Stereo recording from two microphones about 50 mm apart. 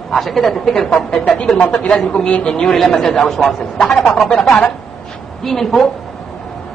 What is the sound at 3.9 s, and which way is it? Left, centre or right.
Speech, left.